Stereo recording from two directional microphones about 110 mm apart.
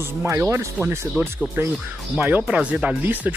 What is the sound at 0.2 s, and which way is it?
Speech, 25° right (ahead or behind).